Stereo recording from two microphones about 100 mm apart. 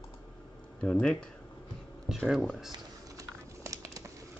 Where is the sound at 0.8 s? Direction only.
10° left (ahead or behind).